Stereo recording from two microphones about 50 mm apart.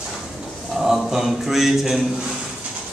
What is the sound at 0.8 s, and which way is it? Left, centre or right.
A man's voice, centre.